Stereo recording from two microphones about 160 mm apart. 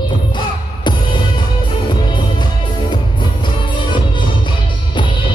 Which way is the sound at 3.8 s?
30° left (ahead or behind).